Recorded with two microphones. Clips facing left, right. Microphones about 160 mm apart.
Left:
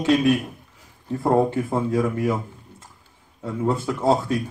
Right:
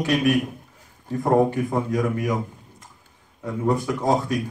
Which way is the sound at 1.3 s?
15° right (ahead or behind).